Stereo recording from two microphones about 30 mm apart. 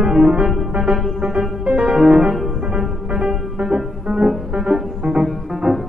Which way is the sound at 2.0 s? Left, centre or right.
Right.